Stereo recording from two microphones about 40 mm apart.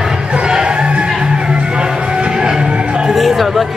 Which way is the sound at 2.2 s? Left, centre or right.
Centre.